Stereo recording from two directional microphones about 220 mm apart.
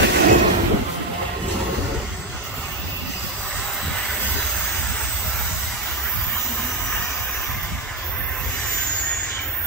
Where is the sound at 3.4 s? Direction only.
Centre (ahead or behind).